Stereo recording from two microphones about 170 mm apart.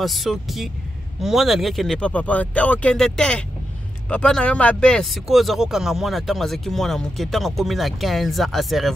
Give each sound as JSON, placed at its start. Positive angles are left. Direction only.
{"t": 0.0, "sound": "speech", "side_deg": 0}